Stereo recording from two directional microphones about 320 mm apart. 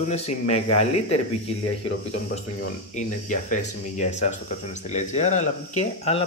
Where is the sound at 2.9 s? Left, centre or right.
Left.